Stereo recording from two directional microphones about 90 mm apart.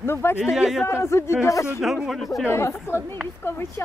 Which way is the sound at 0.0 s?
25° left (ahead or behind).